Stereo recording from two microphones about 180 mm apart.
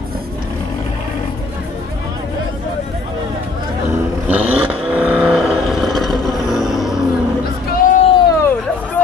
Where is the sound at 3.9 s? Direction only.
10° right (ahead or behind).